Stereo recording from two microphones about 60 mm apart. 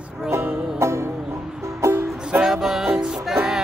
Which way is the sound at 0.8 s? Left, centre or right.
Right.